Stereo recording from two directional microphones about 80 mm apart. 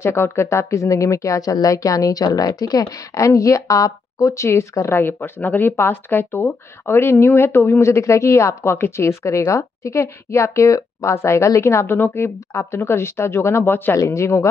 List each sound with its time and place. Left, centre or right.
0.0 s a woman's voice: left
13.9 s a woman's voice: left